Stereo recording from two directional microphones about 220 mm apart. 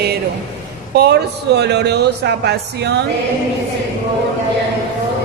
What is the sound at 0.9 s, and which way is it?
A man's voice, 45° right (ahead or behind).